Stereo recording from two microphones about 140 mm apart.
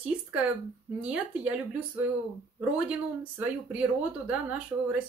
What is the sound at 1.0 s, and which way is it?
Speech, 10° right (ahead or behind).